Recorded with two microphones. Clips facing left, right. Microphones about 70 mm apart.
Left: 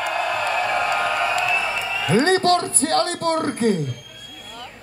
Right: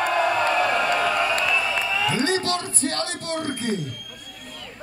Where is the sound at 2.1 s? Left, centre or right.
Left.